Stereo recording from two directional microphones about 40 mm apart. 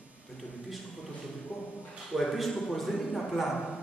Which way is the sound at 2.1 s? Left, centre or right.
Centre.